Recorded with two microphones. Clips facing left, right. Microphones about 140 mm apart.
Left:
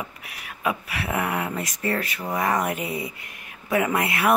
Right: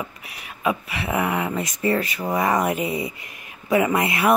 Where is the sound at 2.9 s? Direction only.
20° right (ahead or behind).